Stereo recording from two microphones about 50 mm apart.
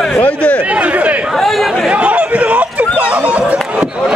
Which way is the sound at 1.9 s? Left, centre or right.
Right.